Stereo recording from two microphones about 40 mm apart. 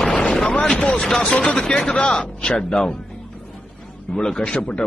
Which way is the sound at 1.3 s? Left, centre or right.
Left.